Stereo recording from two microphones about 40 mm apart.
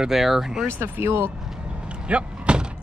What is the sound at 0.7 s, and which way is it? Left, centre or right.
Speech, right.